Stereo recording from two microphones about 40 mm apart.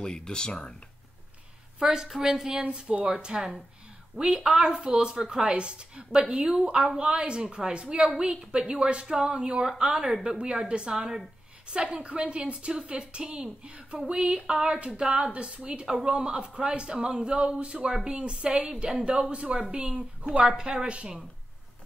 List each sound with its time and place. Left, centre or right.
0.0 s speech: left
1.9 s a woman's voice: centre
2.6 s a woman's voice: right; by 10.4 s centre
10.4 s a woman's voice: right
11.7 s a woman's voice: right